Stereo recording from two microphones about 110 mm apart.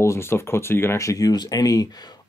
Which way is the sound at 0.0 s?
25° left (ahead or behind).